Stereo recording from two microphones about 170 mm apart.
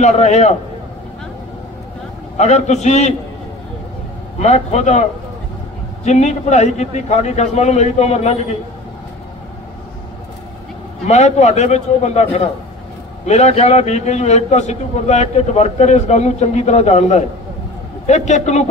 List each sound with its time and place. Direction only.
0.0 s a man's voice: 40° left (ahead or behind)
2.3 s a man's voice: 45° left (ahead or behind)
4.4 s a man's voice: 40° left (ahead or behind)
6.0 s a man's voice: 45° left (ahead or behind)
11.1 s a man's voice: 40° left (ahead or behind)